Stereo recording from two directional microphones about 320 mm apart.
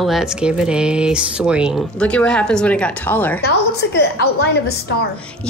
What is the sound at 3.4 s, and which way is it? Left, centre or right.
A woman's voice, left.